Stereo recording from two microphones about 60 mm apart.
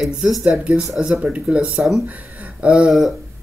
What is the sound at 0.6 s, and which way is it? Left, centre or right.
Speech, centre.